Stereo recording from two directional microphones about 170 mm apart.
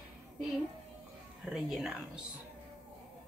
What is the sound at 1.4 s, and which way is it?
Speech, 5° right (ahead or behind).